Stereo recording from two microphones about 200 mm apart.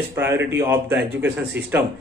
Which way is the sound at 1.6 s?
55° right (ahead or behind).